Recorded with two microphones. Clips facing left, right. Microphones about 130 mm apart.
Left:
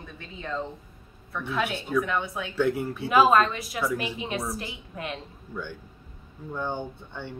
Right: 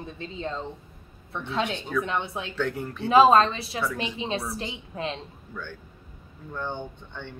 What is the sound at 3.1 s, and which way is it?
A woman's voice, 30° right (ahead or behind).